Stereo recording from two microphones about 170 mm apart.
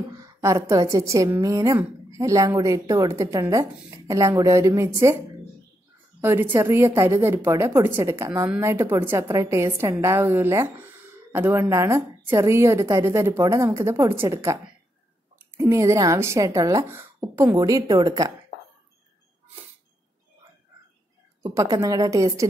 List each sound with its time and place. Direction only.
0.2 s a woman's voice: 20° right (ahead or behind)
6.2 s a woman's voice: 15° right (ahead or behind)
21.4 s a woman's voice: 15° right (ahead or behind)